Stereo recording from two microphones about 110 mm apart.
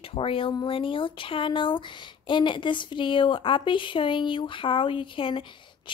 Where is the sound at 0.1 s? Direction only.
55° left (ahead or behind).